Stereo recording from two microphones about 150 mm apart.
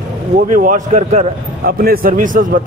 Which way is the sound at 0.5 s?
55° right (ahead or behind).